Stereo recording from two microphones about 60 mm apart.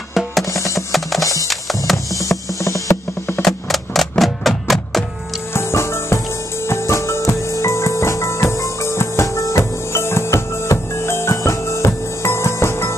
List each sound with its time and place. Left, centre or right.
0.1 s music: centre
0.5 s music: left
0.7 s music: centre
2.2 s music: left
3.4 s music: centre
5.5 s music: left